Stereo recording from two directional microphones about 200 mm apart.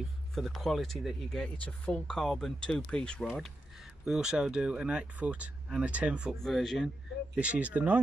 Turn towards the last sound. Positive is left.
turn(degrees=-5)  # may be behind; listen again after turning